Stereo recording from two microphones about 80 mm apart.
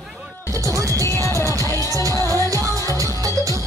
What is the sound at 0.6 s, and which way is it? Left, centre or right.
Music, right.